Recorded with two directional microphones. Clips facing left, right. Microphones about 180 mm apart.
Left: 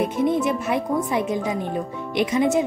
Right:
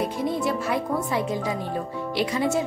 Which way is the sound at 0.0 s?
20° left (ahead or behind).